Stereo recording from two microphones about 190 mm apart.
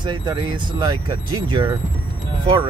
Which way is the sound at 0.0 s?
25° right (ahead or behind).